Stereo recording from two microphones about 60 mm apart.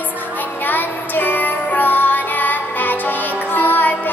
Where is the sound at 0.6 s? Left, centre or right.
Left.